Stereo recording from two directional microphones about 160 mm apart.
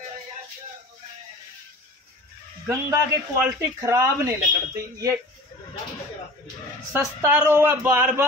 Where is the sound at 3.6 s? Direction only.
20° right (ahead or behind).